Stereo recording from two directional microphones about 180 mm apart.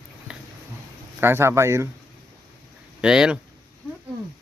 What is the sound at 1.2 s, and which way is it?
Speech, 15° right (ahead or behind).